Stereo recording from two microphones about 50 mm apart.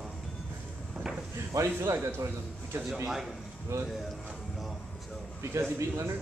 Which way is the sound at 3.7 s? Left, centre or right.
Right.